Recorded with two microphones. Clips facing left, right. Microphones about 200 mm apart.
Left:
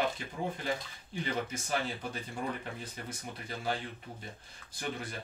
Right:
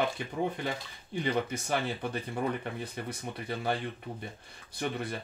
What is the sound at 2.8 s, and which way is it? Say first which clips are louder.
Speech: right 5 dB; 60° right (ahead or behind).